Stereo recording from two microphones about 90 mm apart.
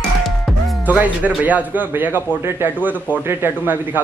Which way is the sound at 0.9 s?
20° right (ahead or behind).